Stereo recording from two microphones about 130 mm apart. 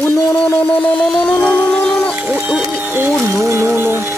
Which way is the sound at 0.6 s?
10° left (ahead or behind).